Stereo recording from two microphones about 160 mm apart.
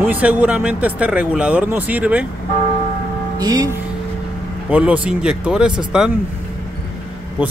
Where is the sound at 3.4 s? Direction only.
25° right (ahead or behind).